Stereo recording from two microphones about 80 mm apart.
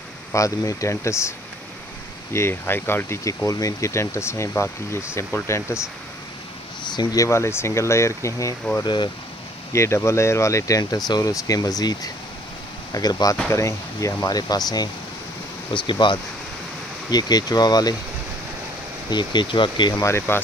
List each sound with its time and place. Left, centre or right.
0.3 s speech: left
2.3 s speech: left
3.4 s speech: left
6.9 s a sound: left
7.2 s speech: left
8.8 s speech: left
9.7 s speech: left
13.5 s speech: left
15.7 s speech: left
17.1 s speech: left
19.0 s speech: left
19.9 s speech: left